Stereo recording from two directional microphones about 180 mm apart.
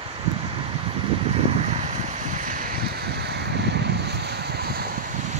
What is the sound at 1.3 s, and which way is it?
Boat, 35° right (ahead or behind).